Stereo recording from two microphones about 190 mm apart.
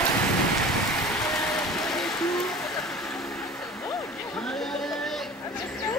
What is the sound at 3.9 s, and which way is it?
Vehicle, centre (ahead or behind).